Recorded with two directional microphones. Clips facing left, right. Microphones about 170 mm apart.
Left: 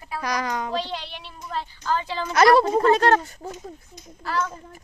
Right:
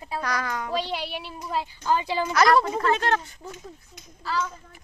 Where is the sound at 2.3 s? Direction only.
30° left (ahead or behind).